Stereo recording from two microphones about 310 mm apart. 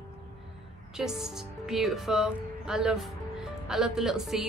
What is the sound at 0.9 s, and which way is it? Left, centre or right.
A woman's voice, centre.